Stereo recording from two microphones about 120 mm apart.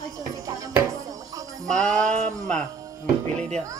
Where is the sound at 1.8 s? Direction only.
5° left (ahead or behind).